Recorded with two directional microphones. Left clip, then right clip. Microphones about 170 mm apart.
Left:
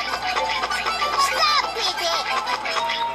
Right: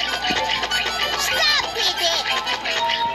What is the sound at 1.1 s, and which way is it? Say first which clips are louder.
Music: left 1 dB; 25° right (ahead or behind).